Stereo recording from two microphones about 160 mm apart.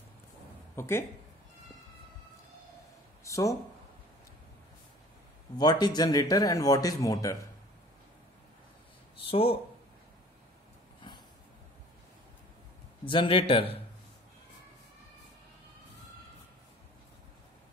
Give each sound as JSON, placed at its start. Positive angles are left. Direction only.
{"t": 0.7, "sound": "speech", "side_deg": 15}
{"t": 3.3, "sound": "a sound", "side_deg": 20}
{"t": 5.6, "sound": "speech", "side_deg": 25}
{"t": 9.2, "sound": "speech", "side_deg": 35}
{"t": 13.0, "sound": "a man's voice", "side_deg": 30}